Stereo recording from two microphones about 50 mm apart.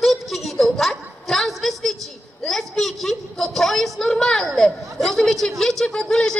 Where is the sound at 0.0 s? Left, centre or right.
Centre.